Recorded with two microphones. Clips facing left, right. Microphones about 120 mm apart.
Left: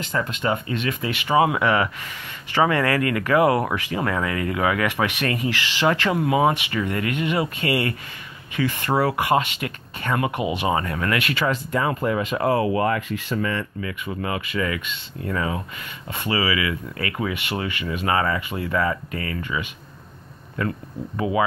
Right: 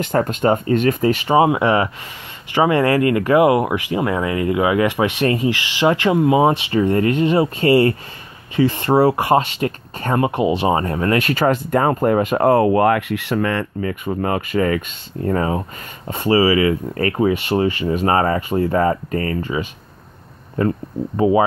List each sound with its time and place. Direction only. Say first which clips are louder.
0.0 s speech: right 8 dB; 50° right (ahead or behind)
13.7 s speech: right 7 dB; 45° right (ahead or behind)